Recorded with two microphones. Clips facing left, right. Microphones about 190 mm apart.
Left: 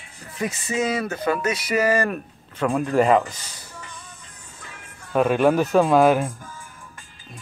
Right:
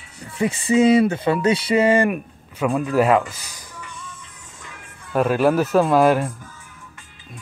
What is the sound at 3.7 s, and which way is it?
Music, 35° left (ahead or behind).